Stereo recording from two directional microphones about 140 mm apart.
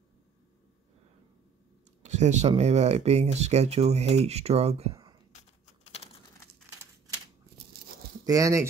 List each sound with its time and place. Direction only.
2.0 s speech: 55° right (ahead or behind)
8.3 s speech: 25° right (ahead or behind)